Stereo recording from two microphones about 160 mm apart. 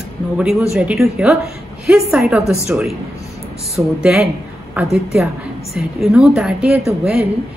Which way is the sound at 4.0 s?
Centre (ahead or behind).